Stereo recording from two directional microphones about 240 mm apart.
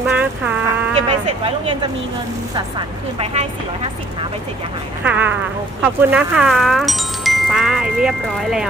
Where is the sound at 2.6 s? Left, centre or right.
Right.